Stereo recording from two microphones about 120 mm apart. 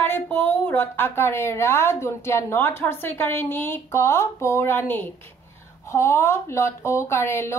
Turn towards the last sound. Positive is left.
turn(degrees=20)  # may be behind; listen again after turning